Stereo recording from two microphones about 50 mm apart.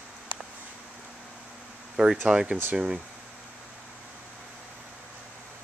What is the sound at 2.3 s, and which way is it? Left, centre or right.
Speech, centre.